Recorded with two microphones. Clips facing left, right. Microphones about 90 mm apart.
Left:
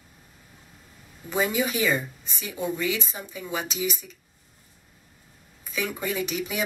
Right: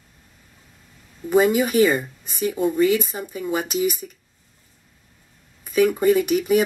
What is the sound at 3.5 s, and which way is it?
Speech, 50° right (ahead or behind).